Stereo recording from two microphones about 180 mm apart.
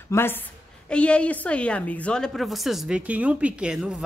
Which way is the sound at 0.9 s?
5° left (ahead or behind).